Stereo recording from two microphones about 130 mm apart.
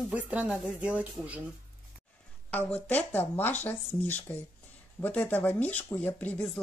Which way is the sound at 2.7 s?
10° left (ahead or behind).